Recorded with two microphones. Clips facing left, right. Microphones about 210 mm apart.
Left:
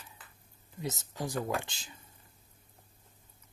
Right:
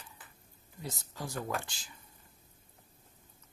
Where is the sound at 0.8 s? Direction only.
20° left (ahead or behind).